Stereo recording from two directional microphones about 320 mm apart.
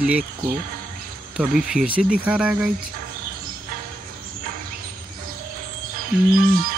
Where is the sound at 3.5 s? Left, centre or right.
Right.